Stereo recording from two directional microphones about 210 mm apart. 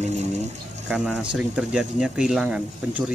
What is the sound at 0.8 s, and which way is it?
Speech, 5° right (ahead or behind).